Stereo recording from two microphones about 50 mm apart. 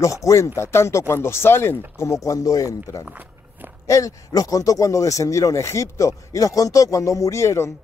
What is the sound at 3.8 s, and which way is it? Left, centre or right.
Speech, left.